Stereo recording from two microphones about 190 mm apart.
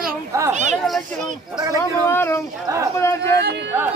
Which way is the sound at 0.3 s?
15° right (ahead or behind).